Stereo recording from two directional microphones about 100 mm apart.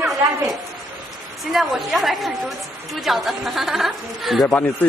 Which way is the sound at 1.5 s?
Centre (ahead or behind).